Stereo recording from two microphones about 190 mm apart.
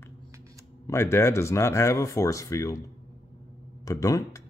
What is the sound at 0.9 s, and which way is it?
Speech, 15° left (ahead or behind).